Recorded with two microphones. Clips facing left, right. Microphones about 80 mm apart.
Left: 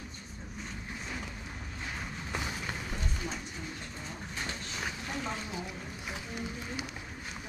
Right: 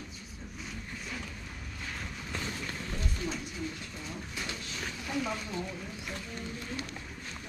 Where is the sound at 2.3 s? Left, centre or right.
Centre.